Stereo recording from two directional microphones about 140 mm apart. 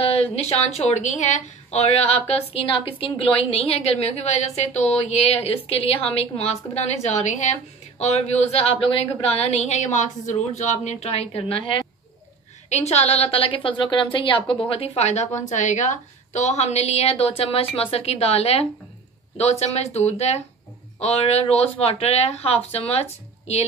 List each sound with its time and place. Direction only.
0.0 s speech: 45° left (ahead or behind)
12.6 s a woman's voice: 50° left (ahead or behind)